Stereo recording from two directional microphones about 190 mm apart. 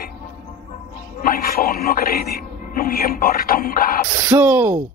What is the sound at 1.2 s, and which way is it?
Speech, 50° left (ahead or behind).